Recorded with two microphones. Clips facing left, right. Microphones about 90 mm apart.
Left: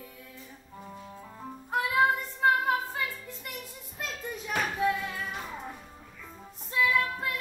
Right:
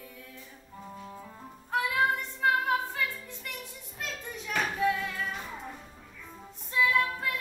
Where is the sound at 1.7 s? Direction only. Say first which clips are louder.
Left 2 dB; 20° left (ahead or behind).